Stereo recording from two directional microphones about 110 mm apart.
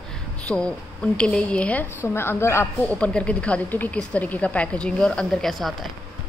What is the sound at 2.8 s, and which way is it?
A woman's voice, 10° left (ahead or behind).